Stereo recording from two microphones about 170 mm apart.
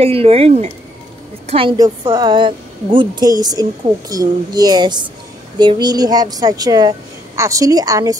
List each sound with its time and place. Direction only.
0.0 s a woman's voice: 35° right (ahead or behind); by 8.2 s 20° right (ahead or behind)